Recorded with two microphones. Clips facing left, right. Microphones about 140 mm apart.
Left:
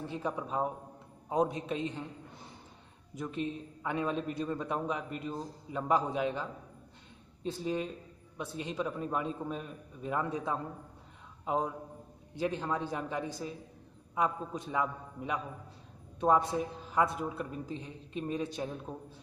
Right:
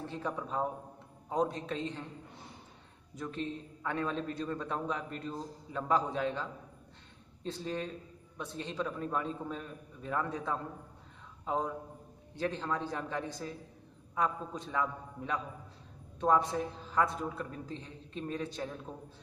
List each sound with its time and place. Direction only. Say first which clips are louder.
0.1 s a man's voice: left 2 dB; 10° left (ahead or behind)
3.2 s a man's voice: left 2 dB; 10° left (ahead or behind)